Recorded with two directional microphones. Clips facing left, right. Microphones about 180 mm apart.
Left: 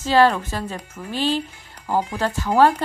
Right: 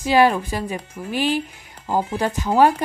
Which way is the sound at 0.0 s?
15° right (ahead or behind).